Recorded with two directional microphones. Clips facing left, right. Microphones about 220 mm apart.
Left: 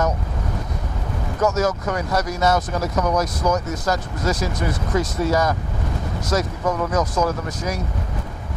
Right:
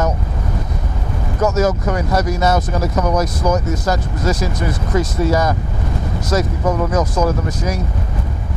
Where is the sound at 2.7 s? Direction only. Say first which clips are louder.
Right 3 dB; 25° right (ahead or behind).